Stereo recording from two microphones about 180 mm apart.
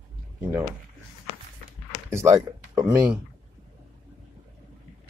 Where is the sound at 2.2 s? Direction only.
20° right (ahead or behind).